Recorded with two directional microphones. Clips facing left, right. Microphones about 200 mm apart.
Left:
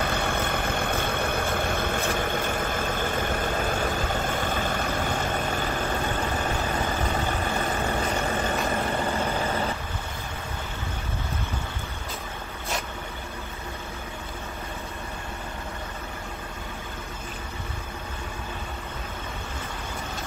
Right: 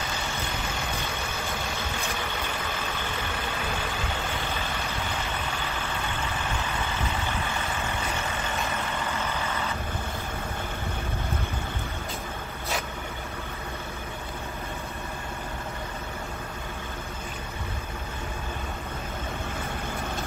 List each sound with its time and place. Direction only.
0.0 s vehicle: 60° left (ahead or behind); by 9.7 s 35° left (ahead or behind)